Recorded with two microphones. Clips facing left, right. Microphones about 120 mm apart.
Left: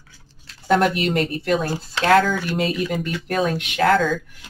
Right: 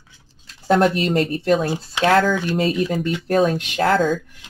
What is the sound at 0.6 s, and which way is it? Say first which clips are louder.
Speech: right 2 dB; 35° right (ahead or behind).